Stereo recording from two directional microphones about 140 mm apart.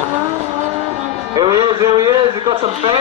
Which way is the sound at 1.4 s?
30° right (ahead or behind).